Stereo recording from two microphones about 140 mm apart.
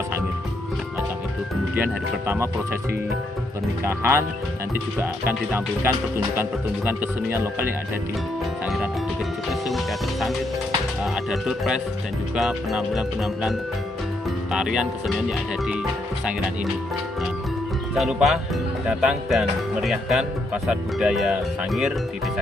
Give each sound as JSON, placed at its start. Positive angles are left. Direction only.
{"t": 1.8, "sound": "speech", "side_deg": -20}
{"t": 3.8, "sound": "speech", "side_deg": -15}
{"t": 11.4, "sound": "speech", "side_deg": -5}
{"t": 17.9, "sound": "speech", "side_deg": 0}